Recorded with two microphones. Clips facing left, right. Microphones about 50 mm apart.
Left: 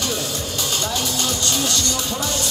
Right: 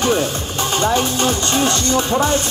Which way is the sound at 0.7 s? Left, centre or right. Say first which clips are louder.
Right 10 dB; right.